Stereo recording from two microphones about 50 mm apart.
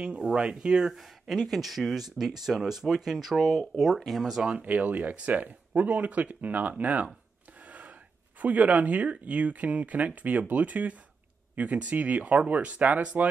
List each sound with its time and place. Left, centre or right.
0.0 s speech: centre
4.6 s speech: right
8.4 s speech: right